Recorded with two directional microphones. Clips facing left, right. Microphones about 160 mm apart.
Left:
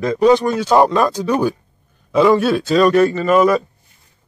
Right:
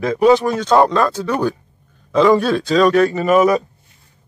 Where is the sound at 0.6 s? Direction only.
10° left (ahead or behind); by 3.6 s 10° right (ahead or behind).